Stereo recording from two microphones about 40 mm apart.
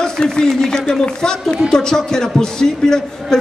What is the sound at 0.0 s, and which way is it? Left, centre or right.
A woman's voice, centre.